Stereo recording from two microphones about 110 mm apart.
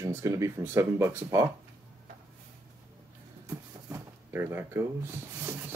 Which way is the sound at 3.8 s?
25° right (ahead or behind).